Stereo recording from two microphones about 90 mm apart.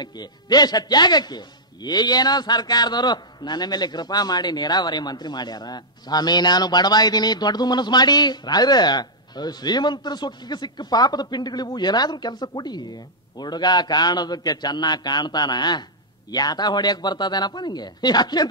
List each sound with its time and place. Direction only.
0.0 s a man's voice: 50° left (ahead or behind)